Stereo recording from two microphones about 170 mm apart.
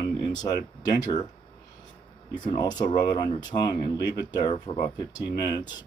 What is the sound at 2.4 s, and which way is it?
Speech, 25° left (ahead or behind).